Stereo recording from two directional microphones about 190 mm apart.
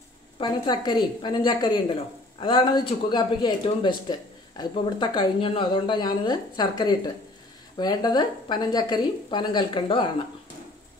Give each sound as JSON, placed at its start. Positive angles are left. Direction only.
{"t": 0.4, "sound": "speech", "side_deg": 25}